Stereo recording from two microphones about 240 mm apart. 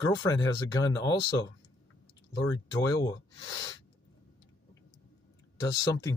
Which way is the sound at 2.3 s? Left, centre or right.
Centre.